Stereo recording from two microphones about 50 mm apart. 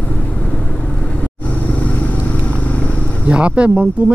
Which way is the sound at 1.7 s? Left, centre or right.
Left.